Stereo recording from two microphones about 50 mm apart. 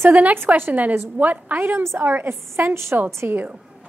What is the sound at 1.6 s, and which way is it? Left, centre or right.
Speech, right.